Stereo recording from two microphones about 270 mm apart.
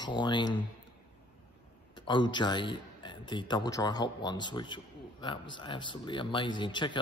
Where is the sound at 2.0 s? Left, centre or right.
Centre.